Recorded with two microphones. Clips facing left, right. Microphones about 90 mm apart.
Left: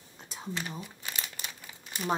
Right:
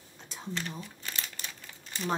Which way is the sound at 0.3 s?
10° left (ahead or behind).